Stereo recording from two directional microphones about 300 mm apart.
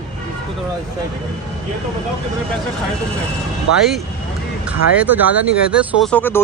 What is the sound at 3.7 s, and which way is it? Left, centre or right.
Speech, right.